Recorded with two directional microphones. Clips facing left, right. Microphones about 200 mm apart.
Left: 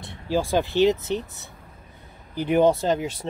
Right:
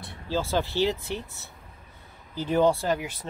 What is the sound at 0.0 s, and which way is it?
Speech, 15° left (ahead or behind).